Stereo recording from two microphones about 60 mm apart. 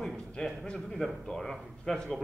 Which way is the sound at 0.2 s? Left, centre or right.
Centre.